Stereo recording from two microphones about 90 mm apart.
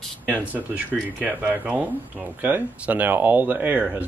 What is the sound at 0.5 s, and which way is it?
Speech, 20° right (ahead or behind).